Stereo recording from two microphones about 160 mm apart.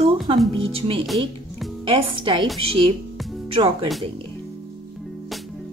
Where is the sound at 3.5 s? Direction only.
30° right (ahead or behind).